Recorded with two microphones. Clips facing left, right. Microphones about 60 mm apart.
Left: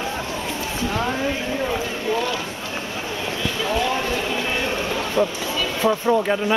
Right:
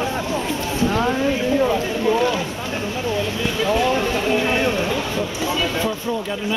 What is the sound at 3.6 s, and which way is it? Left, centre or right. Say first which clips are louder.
Speech: right 4 dB; centre.